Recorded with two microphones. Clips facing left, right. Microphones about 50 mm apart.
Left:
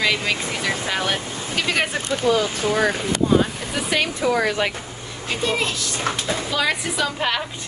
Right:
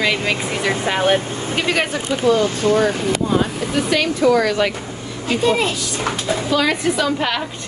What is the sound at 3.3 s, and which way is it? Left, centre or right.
Speech, centre.